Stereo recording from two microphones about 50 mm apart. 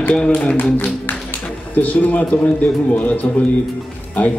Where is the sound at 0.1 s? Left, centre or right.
Centre.